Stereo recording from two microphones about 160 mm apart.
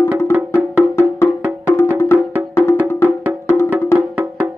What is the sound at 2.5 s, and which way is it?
Music, 15° left (ahead or behind).